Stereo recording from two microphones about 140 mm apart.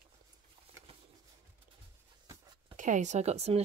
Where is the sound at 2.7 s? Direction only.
65° right (ahead or behind).